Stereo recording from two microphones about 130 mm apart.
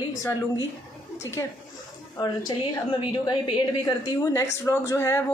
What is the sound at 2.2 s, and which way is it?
A woman's voice, 35° left (ahead or behind).